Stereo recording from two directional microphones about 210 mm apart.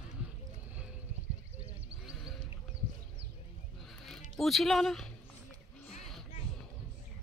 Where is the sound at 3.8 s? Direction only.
Centre (ahead or behind).